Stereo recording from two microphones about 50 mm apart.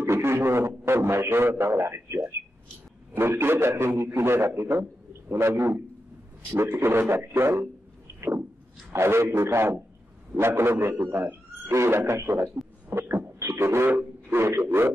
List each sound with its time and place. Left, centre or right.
0.0 s a man's voice: right
8.9 s a man's voice: right
11.7 s a man's voice: right
13.4 s beatboxing: right
13.8 s speech: right